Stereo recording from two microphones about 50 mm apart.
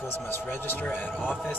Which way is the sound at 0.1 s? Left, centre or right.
Left.